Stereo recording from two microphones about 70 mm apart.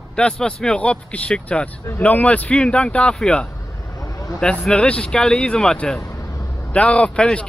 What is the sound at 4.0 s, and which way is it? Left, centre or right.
Vehicle, left.